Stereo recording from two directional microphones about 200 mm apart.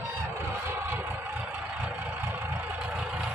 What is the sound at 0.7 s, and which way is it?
Vehicle, 10° right (ahead or behind).